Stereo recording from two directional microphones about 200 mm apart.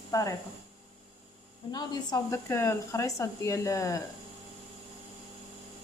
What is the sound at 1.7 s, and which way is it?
A woman's voice, 20° left (ahead or behind).